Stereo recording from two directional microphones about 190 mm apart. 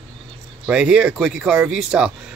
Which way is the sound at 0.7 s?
5° right (ahead or behind).